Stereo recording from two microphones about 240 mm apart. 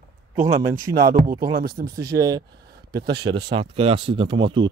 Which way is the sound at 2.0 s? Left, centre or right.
Centre.